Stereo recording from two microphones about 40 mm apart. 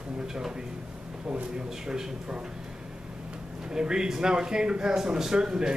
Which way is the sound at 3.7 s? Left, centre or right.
Centre.